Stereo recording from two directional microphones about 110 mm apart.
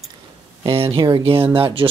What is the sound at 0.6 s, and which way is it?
Speech, 55° right (ahead or behind).